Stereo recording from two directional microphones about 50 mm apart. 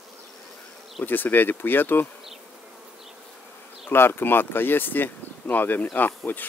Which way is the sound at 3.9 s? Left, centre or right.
Left.